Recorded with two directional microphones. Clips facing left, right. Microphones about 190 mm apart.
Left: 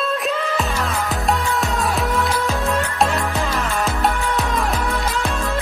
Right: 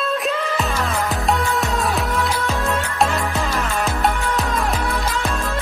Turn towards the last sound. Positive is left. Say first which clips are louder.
# left 1 dB
turn(degrees=0)  # may be behind; listen again after turning